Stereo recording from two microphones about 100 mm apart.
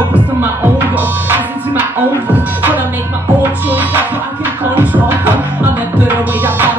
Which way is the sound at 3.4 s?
15° right (ahead or behind).